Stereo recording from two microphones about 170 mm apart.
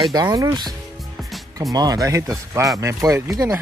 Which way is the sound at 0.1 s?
20° right (ahead or behind).